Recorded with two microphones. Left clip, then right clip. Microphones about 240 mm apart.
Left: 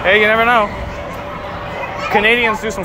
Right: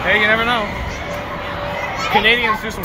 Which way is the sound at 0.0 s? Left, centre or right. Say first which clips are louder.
Left 3 dB; centre.